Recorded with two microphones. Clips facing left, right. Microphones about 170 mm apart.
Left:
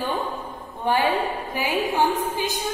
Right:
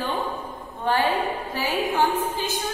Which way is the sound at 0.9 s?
15° left (ahead or behind).